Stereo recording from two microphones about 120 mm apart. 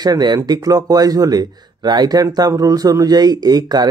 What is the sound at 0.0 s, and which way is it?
Speech, 35° right (ahead or behind).